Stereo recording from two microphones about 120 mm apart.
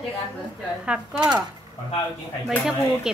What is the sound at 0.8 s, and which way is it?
Speech, 10° right (ahead or behind).